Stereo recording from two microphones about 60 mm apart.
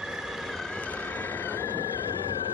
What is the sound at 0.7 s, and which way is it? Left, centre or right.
Vehicle, left.